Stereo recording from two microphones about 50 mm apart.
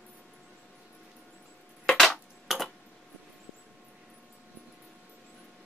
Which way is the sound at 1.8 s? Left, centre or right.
Centre.